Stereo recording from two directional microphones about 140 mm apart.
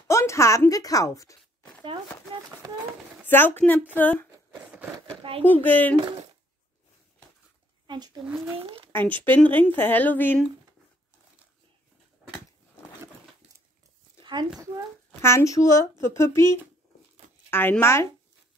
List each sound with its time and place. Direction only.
0.1 s speech: 20° left (ahead or behind)
3.3 s a woman's voice: 15° left (ahead or behind)
5.4 s a woman's voice: 15° left (ahead or behind)
7.8 s a sound: 35° right (ahead or behind)
8.5 s speech: 40° right (ahead or behind)
9.2 s a woman's voice: 15° left (ahead or behind)
14.4 s speech: 30° right (ahead or behind)
15.2 s a woman's voice: 20° left (ahead or behind)